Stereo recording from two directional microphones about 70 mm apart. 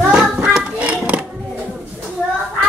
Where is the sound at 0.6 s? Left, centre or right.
Centre.